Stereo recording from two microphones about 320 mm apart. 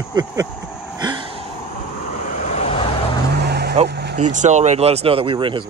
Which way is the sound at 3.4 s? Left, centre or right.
Right.